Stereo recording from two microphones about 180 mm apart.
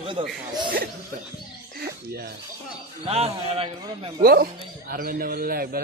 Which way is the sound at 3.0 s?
35° right (ahead or behind).